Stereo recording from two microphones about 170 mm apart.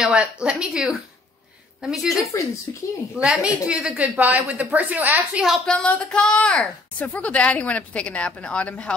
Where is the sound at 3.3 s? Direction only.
5° right (ahead or behind).